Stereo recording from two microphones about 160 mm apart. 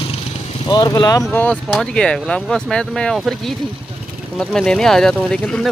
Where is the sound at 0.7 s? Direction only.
25° left (ahead or behind).